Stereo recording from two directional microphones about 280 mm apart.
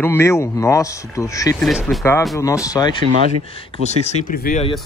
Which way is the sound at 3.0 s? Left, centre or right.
Right.